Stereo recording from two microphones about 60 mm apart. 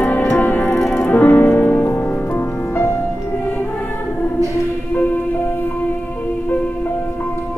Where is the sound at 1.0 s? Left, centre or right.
Left.